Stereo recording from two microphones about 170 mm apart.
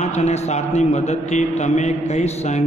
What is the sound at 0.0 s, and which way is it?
A man's voice, 40° left (ahead or behind).